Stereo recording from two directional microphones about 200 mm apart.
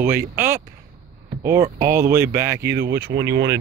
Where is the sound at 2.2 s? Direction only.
50° right (ahead or behind).